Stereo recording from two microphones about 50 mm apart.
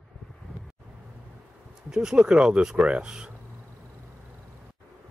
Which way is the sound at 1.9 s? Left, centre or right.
Centre.